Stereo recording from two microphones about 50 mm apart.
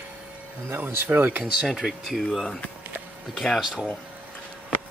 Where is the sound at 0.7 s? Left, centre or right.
Right.